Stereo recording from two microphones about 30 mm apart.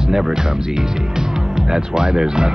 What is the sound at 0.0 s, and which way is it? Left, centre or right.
Speech, centre.